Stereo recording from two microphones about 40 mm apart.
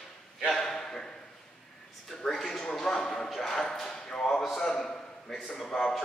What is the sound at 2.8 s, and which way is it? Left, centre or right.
Clip-clop, centre.